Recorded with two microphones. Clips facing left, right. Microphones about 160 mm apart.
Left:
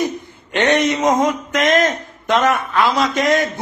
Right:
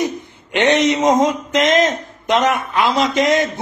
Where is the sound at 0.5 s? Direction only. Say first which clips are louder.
Right 1 dB; 20° right (ahead or behind).